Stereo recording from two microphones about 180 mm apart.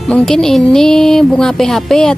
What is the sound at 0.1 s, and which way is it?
Speech, 5° left (ahead or behind).